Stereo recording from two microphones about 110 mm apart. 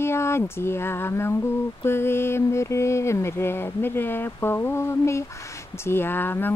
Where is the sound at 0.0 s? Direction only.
25° left (ahead or behind).